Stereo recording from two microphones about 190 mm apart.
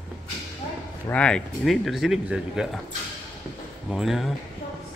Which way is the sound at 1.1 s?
5° left (ahead or behind).